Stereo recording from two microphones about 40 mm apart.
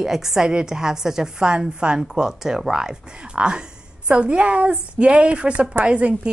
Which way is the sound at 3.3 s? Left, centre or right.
Right.